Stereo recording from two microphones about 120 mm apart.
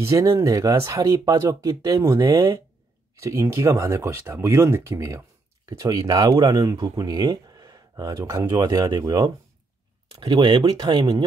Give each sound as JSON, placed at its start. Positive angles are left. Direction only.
{"t": 0.0, "sound": "speech", "side_deg": -25}